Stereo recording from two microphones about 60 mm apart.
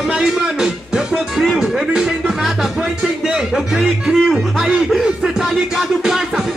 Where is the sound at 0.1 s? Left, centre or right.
Centre.